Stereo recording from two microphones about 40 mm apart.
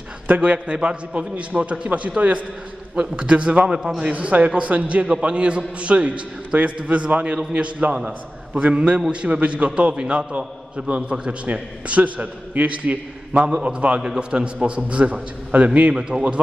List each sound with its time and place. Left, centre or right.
0.3 s a man's voice: right
3.6 s a man's voice: centre
4.0 s a man's voice: right
15.9 s a man's voice: centre